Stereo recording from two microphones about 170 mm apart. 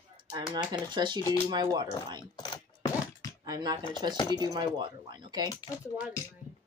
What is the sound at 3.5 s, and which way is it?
Speech, 25° right (ahead or behind).